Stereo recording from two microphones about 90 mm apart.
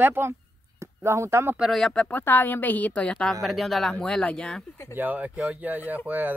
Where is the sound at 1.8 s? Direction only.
10° left (ahead or behind).